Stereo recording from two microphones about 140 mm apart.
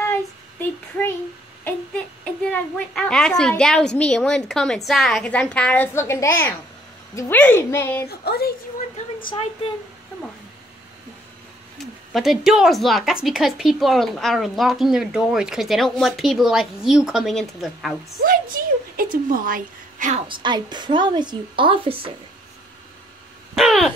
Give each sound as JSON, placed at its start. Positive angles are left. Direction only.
{"t": 0.0, "sound": "a sound", "side_deg": 15}
{"t": 1.6, "sound": "a woman's voice", "side_deg": 10}
{"t": 8.3, "sound": "a woman's voice", "side_deg": 90}
{"t": 11.8, "sound": "speech", "side_deg": 0}
{"t": 18.2, "sound": "speech", "side_deg": -90}
{"t": 19.3, "sound": "a woman's voice", "side_deg": -80}
{"t": 20.2, "sound": "a woman's voice", "side_deg": -35}
{"t": 23.5, "sound": "speech", "side_deg": 0}